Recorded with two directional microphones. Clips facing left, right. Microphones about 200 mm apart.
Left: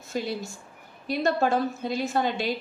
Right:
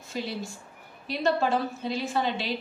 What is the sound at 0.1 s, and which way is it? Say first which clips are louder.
A woman's voice: left 3 dB; 45° left (ahead or behind).